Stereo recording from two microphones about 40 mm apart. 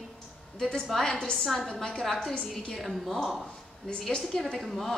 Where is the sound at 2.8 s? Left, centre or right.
Centre.